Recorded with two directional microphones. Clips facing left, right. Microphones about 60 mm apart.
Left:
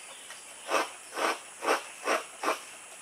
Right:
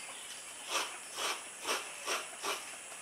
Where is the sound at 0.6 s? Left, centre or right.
Left.